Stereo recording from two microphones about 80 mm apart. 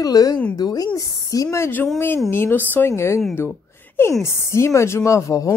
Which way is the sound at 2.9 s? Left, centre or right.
Left.